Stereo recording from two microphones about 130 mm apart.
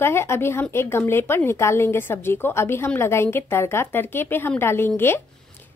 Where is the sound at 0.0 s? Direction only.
20° left (ahead or behind).